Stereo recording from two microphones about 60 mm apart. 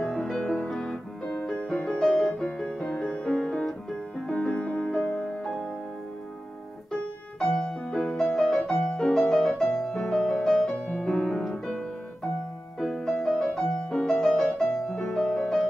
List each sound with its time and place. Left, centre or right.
0.0 s music: centre
4.9 s music: centre
7.5 s music: centre
12.8 s music: centre